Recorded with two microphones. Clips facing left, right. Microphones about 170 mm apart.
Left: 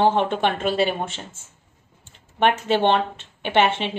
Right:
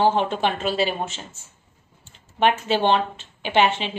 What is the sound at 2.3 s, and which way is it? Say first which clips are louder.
A woman's voice: left 1 dB; 55° left (ahead or behind).